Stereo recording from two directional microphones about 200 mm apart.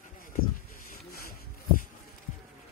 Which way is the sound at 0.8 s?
50° left (ahead or behind).